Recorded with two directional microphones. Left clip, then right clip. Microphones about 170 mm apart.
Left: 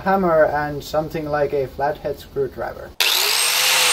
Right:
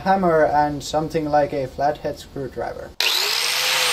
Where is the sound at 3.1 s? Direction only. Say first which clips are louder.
Left 2 dB; 10° left (ahead or behind).